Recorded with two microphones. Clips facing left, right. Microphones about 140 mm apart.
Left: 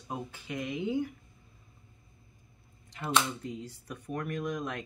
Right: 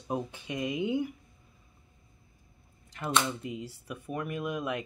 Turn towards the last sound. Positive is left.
turn(degrees=-10)  # may be behind; listen again after turning